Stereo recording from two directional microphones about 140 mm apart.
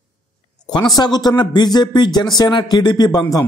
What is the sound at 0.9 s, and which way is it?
A man's voice, 30° left (ahead or behind).